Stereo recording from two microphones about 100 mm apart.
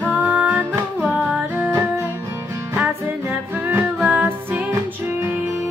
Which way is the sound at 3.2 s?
20° right (ahead or behind).